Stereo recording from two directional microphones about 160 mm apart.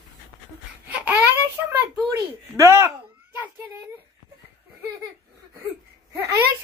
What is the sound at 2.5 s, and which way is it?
Speech, 15° right (ahead or behind).